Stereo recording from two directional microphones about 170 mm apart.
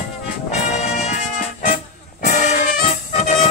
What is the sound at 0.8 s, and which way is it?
Music, 45° left (ahead or behind).